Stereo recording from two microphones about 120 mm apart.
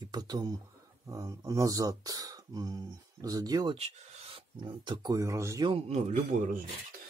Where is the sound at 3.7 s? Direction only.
60° right (ahead or behind); by 5.7 s 25° right (ahead or behind).